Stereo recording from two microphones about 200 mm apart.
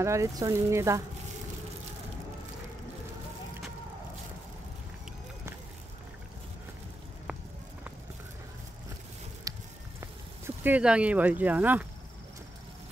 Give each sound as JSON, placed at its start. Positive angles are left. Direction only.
{"t": 0.0, "sound": "speech", "side_deg": -15}
{"t": 9.5, "sound": "a sound", "side_deg": -15}
{"t": 9.9, "sound": "speech", "side_deg": -10}